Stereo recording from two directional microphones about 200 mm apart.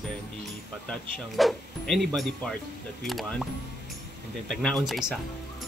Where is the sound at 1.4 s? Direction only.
Centre (ahead or behind).